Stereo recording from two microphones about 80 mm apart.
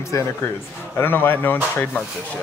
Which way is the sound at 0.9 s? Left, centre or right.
Left.